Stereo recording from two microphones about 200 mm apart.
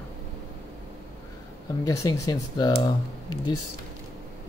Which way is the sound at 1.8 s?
15° left (ahead or behind).